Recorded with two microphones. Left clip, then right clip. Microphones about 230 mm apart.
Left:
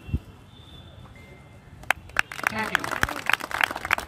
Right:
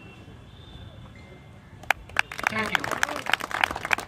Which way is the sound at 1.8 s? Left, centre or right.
Centre.